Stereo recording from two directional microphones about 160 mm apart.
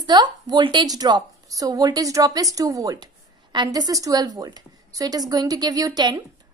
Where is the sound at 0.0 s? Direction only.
25° right (ahead or behind).